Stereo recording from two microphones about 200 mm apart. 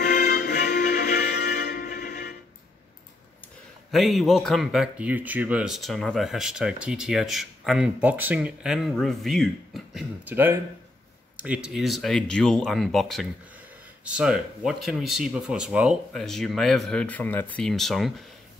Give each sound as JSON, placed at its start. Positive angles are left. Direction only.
{"t": 0.0, "sound": "music", "side_deg": 40}
{"t": 3.9, "sound": "speech", "side_deg": 0}